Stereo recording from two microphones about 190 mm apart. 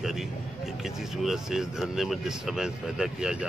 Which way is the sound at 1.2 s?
Centre (ahead or behind).